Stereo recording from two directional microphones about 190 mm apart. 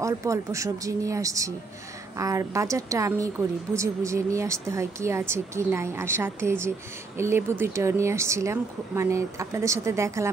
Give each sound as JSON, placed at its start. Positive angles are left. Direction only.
{"t": 0.0, "sound": "a woman's voice", "side_deg": -15}